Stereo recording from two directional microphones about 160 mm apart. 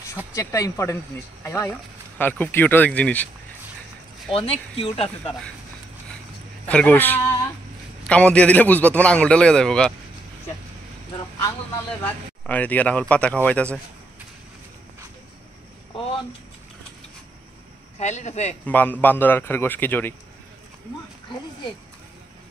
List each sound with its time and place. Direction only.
0.3 s speech: 20° left (ahead or behind)
4.3 s speech: 35° left (ahead or behind)
6.7 s speech: 10° left (ahead or behind)
12.0 s speech: 10° left (ahead or behind)
17.9 s a man's voice: 45° left (ahead or behind)
18.7 s speech: 10° left (ahead or behind)